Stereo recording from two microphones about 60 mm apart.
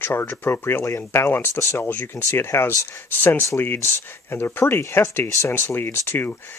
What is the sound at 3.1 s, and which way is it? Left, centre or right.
Speech, left.